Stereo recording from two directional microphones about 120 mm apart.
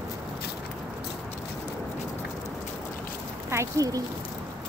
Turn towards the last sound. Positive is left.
turn(degrees=-30)  # may be behind; listen again after turning